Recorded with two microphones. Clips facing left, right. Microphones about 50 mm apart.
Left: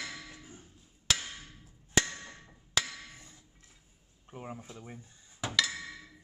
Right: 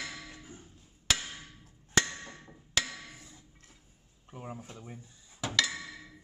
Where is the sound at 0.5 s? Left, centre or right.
Centre.